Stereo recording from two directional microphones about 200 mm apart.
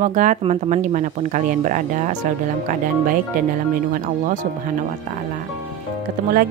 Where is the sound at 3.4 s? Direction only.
40° right (ahead or behind).